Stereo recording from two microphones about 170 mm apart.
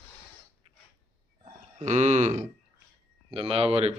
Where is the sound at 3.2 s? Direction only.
35° right (ahead or behind).